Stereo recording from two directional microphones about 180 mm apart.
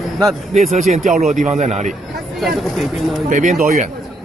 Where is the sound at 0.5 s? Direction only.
40° right (ahead or behind).